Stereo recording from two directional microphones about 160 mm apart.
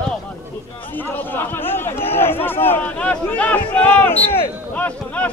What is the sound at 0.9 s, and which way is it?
Speech, 10° left (ahead or behind).